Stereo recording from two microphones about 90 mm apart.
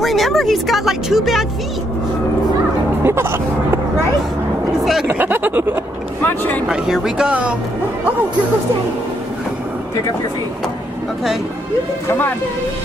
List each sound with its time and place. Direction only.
0.0 s speech: centre (ahead or behind)
3.0 s music: 25° right (ahead or behind)
5.0 s speech: 25° right (ahead or behind)
6.2 s speech: 25° left (ahead or behind)
6.7 s speech: 5° right (ahead or behind)
12.1 s speech: 25° left (ahead or behind)